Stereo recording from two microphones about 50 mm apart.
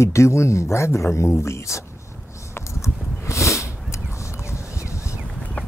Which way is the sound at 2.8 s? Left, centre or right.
Left.